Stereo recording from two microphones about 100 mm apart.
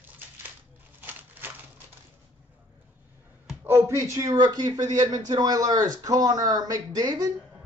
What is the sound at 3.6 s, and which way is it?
Speech, 20° right (ahead or behind).